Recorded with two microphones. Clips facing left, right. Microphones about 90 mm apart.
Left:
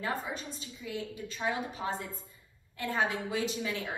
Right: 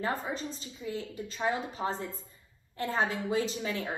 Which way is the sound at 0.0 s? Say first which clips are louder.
Right 2 dB; 35° right (ahead or behind).